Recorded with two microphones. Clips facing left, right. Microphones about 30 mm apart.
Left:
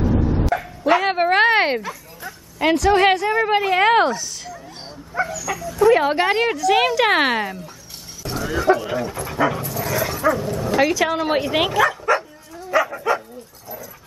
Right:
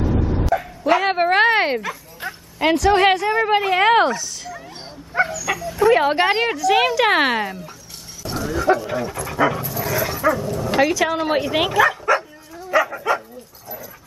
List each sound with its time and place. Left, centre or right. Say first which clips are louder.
0.0 s bow-wow: left 1 dB; centre
2.6 s a woman's voice: even; centre
5.2 s dog: right 4 dB; right
5.5 s dog: right 2 dB; right
5.9 s speech: right 1 dB; centre
6.4 s a woman's voice: even; centre
8.2 s dog: even; centre
8.5 s a woman's voice: left 1 dB; centre
12.1 s bow-wow: right 1 dB; centre